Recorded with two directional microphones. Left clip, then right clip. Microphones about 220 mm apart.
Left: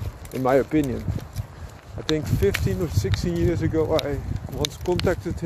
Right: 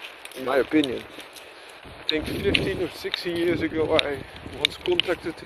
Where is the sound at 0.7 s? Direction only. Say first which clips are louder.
Right 1 dB; 5° left (ahead or behind).